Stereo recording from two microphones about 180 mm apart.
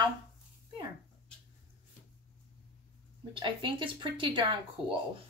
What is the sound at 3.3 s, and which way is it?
Speech, 30° right (ahead or behind).